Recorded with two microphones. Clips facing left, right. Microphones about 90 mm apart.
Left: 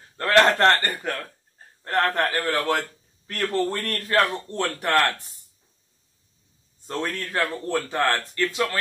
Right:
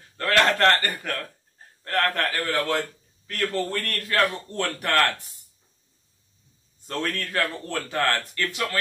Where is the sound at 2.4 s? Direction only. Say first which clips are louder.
Left 1 dB; 45° left (ahead or behind).